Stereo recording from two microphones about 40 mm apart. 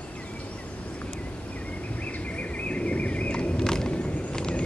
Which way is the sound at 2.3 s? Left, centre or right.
Left.